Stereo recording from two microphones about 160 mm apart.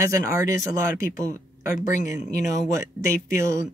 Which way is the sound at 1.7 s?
50° left (ahead or behind).